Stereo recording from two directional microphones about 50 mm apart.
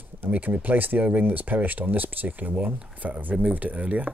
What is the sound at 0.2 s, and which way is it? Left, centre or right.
Speech, right.